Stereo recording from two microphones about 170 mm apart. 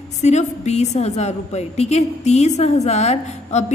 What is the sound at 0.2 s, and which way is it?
A woman's voice, 40° left (ahead or behind).